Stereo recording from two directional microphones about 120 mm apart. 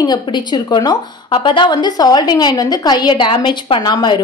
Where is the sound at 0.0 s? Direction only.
35° left (ahead or behind).